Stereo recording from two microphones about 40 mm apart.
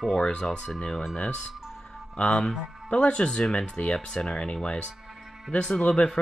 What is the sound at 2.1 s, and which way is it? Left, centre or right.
Speech, left.